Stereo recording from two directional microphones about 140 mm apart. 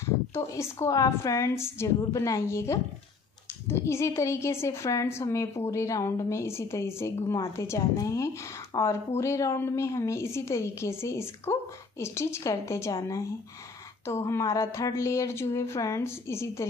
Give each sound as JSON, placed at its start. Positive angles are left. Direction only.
{"t": 0.0, "sound": "a woman's voice", "side_deg": 20}
{"t": 14.0, "sound": "a woman's voice", "side_deg": 20}